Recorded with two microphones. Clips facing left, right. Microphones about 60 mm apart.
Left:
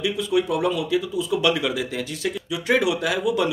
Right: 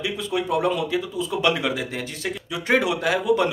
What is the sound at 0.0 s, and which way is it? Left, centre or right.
A man's voice, right.